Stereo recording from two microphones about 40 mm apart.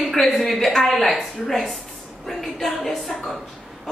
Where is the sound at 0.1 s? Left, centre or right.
Centre.